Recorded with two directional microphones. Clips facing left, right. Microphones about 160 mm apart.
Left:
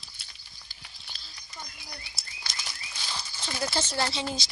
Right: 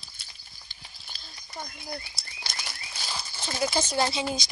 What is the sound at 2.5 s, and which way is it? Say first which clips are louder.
Bird flight: right 2 dB; 60° right (ahead or behind).